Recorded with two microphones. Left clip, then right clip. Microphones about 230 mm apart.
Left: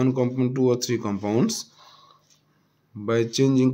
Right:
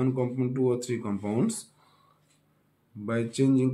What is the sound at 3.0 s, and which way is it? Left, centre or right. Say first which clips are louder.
Speech: left 6 dB; left.